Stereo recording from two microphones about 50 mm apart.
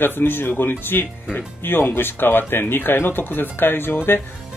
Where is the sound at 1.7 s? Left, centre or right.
Left.